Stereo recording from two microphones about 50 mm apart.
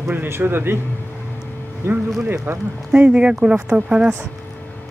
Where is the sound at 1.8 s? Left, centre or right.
Right.